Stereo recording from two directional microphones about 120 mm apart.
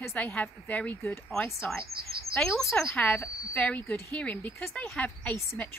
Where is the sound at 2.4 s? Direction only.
5° left (ahead or behind).